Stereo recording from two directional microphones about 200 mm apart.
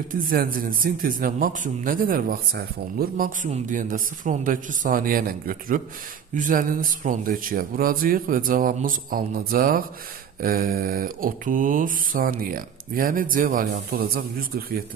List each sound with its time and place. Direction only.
0.3 s a man's voice: 45° right (ahead or behind)